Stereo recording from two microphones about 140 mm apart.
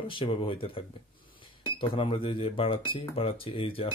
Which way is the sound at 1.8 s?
40° left (ahead or behind).